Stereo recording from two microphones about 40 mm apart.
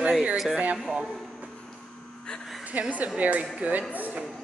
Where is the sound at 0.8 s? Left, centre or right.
Centre.